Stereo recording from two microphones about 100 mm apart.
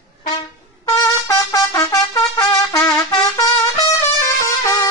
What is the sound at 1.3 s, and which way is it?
Trumpet, 35° left (ahead or behind).